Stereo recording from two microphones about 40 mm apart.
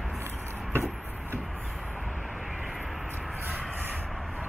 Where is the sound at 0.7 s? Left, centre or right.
Right.